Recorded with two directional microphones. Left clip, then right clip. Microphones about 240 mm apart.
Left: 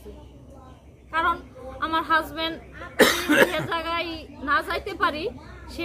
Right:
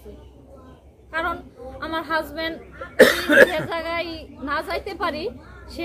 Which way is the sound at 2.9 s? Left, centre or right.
Centre.